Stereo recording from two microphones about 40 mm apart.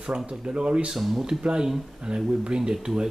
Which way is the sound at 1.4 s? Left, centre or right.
Right.